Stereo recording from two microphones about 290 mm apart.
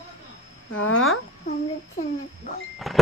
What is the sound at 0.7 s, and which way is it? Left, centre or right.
Speech, left.